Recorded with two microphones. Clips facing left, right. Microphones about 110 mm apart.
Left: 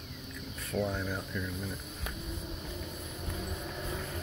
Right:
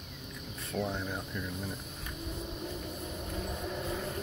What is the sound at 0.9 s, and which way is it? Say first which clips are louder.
Speech: left 1 dB; 20° right (ahead or behind).